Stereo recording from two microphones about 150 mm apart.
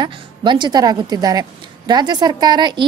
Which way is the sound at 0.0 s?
30° right (ahead or behind).